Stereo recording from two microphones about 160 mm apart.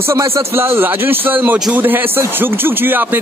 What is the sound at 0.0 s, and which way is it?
A man's voice, 15° right (ahead or behind).